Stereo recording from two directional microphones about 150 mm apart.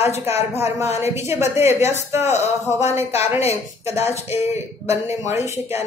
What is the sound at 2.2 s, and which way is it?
Speech, 45° left (ahead or behind).